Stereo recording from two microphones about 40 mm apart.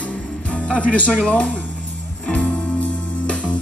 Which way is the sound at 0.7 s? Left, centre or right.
Left.